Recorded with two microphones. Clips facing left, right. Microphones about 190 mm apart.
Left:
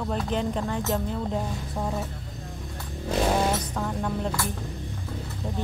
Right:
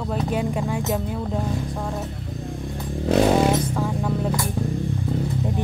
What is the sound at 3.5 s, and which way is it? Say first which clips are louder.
Vehicle: right 6 dB; 10° right (ahead or behind).